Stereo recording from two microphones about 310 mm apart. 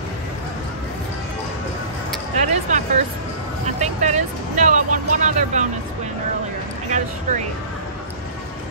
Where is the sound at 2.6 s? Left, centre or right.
Right.